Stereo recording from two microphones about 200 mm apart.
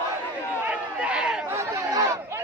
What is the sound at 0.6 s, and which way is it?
Chatter, 5° right (ahead or behind).